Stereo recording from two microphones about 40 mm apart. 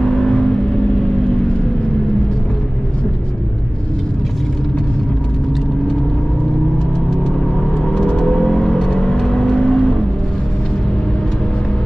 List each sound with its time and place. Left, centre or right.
0.0 s vehicle: centre
7.8 s vehicle: centre
9.1 s vehicle: centre